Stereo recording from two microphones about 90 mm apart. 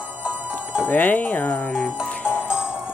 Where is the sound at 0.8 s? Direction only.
20° left (ahead or behind).